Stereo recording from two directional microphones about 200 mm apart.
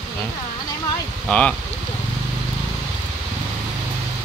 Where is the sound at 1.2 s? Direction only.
5° left (ahead or behind).